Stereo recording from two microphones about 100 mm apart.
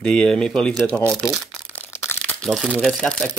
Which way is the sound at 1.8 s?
20° left (ahead or behind).